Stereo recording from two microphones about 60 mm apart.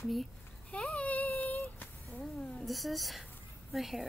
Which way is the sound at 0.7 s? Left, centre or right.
Left.